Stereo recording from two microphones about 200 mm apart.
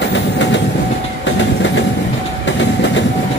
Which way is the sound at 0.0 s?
60° left (ahead or behind).